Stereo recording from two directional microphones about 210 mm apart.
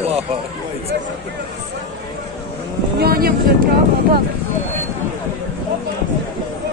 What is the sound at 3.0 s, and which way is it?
Speech, 45° right (ahead or behind).